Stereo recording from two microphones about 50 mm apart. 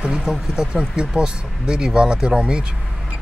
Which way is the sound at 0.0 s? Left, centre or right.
Centre.